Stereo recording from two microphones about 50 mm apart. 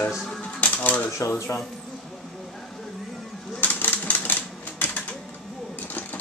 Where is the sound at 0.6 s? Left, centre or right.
Left.